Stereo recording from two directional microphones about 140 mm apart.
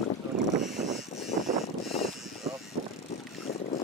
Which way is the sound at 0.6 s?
Centre (ahead or behind).